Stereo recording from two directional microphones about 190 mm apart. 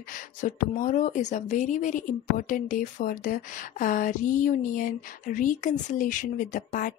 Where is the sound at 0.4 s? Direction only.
40° left (ahead or behind).